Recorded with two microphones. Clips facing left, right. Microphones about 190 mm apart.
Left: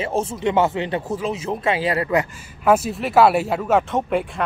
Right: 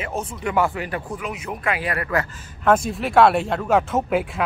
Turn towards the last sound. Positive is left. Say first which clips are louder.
# even
turn(degrees=0)  # may be behind; listen again after turning